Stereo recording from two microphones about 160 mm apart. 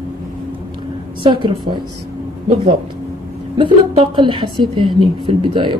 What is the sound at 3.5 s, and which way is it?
A woman's voice, 30° right (ahead or behind).